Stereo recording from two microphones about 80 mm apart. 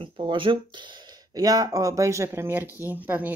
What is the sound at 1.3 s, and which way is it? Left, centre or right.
Speech, right.